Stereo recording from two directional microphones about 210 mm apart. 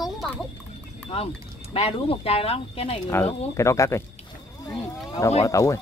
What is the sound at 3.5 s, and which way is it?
Speech, 15° left (ahead or behind).